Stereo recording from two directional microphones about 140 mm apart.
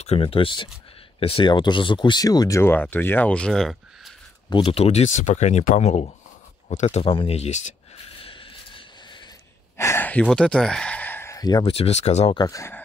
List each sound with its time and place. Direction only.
0.0 s speech: 45° left (ahead or behind); by 4.1 s centre (ahead or behind)
4.5 s speech: 35° left (ahead or behind)
4.7 s speech: 45° left (ahead or behind)
8.2 s a sound: 40° left (ahead or behind)
9.8 s a sound: 15° left (ahead or behind)
11.7 s speech: 50° left (ahead or behind)
12.4 s speech: 25° left (ahead or behind)